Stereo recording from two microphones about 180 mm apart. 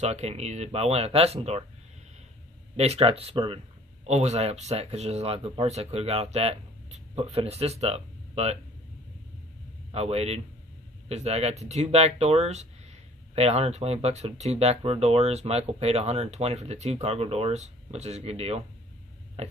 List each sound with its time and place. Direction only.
0.0 s speech: 35° right (ahead or behind)
2.7 s speech: 35° right (ahead or behind)
9.8 s a man's voice: 35° right (ahead or behind)
19.4 s a sound: 35° right (ahead or behind)